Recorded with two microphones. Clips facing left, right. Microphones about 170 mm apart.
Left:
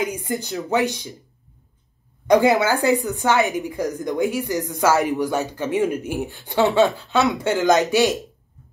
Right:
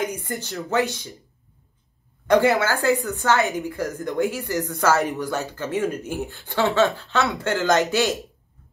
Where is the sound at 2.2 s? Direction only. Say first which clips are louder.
Left 2 dB; 15° left (ahead or behind).